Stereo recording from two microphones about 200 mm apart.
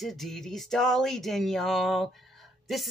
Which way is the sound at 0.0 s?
Centre (ahead or behind).